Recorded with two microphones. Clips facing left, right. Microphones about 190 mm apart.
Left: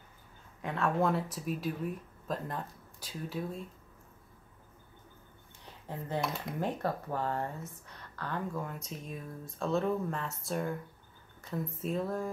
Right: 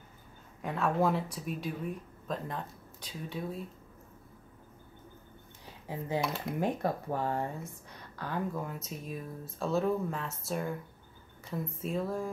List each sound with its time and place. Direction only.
0.6 s speech: centre (ahead or behind)
5.9 s speech: 10° right (ahead or behind)
6.6 s speech: 15° right (ahead or behind)